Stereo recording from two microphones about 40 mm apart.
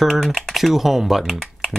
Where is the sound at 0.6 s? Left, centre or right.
Centre.